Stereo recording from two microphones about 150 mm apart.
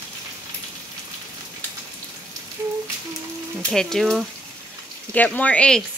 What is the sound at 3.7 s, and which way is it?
Speech, 5° left (ahead or behind).